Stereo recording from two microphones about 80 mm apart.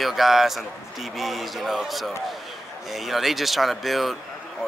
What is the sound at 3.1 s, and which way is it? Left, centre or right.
Speech, centre.